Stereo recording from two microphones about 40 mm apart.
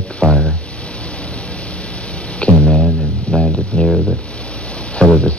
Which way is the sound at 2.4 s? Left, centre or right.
Left.